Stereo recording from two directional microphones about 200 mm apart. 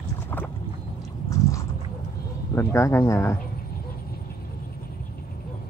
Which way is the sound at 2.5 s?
15° left (ahead or behind).